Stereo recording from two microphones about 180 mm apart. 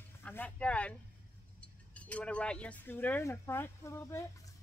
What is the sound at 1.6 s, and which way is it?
Speech, 5° left (ahead or behind).